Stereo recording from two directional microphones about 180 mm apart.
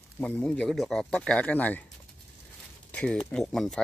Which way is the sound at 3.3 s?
Centre (ahead or behind).